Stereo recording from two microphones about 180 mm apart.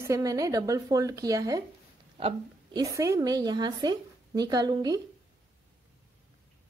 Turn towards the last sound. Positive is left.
turn(degrees=-20)  # may be behind; listen again after turning